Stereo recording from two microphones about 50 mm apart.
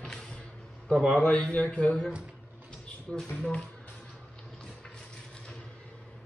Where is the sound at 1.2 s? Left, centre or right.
Left.